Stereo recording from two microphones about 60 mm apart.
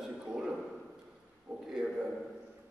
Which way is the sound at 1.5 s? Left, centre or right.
Right.